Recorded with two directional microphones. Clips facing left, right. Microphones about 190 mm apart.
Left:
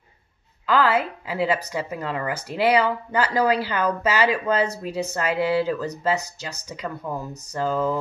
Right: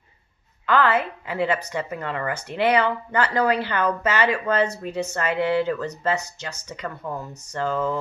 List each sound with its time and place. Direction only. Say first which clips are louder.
0.7 s a woman's voice: even; 5° left (ahead or behind)